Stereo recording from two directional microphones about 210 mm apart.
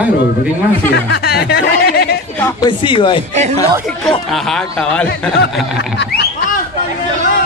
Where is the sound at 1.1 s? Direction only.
50° left (ahead or behind).